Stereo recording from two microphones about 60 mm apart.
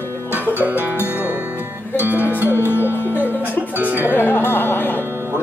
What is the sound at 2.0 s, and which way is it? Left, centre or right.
Music, right.